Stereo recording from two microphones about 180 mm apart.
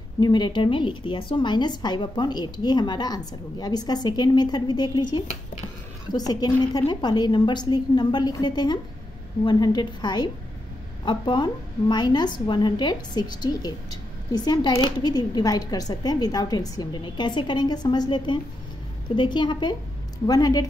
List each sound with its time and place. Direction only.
0.2 s a woman's voice: 25° left (ahead or behind)